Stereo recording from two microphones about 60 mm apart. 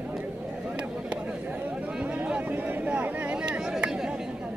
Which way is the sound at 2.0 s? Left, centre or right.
Right.